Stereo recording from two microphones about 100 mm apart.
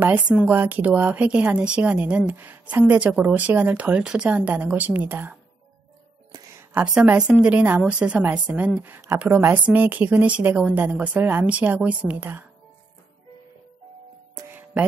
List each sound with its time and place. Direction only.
0.0 s a woman's voice: 15° right (ahead or behind)
6.8 s a woman's voice: 5° right (ahead or behind)
14.5 s music: 15° right (ahead or behind)